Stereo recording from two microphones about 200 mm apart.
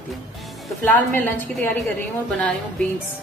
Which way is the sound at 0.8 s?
10° left (ahead or behind).